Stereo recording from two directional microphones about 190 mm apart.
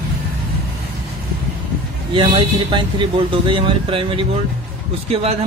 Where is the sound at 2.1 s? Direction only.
25° right (ahead or behind).